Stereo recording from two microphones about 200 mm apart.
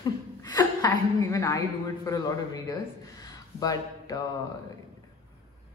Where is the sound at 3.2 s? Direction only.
20° left (ahead or behind).